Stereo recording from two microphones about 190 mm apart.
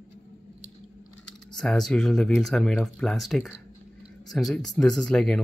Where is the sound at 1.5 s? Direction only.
Centre (ahead or behind).